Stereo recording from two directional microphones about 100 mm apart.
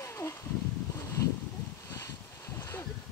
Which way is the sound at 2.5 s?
25° left (ahead or behind).